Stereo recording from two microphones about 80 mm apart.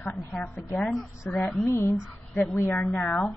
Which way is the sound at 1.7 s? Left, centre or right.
Left.